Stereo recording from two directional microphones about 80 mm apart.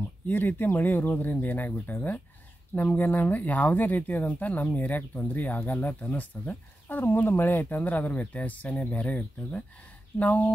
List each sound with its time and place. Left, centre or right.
0.3 s speech: left